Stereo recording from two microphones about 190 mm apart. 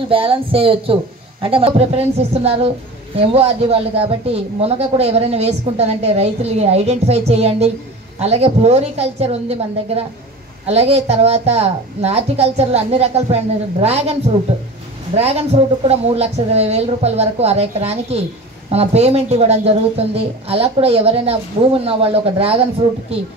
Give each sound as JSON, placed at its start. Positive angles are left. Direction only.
{"t": 0.1, "sound": "speech", "side_deg": -30}
{"t": 10.7, "sound": "speech", "side_deg": -30}